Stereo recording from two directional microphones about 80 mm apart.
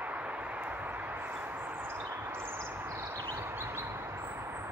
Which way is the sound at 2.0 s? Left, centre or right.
Right.